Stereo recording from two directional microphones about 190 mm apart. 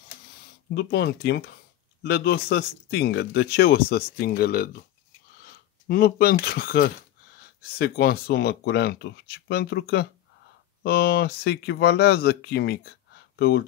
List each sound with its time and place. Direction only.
0.7 s speech: 60° left (ahead or behind)